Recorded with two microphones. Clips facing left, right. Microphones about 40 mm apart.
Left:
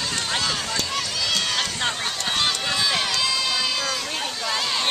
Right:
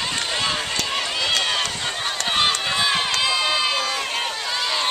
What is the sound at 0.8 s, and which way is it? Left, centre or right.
Run, right.